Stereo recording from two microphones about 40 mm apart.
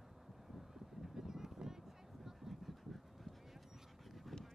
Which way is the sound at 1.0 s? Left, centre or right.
Centre.